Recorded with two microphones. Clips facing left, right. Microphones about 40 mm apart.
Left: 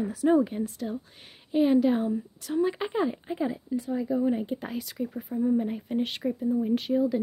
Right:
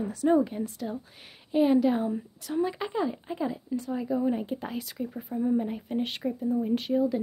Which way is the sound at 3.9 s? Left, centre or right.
Centre.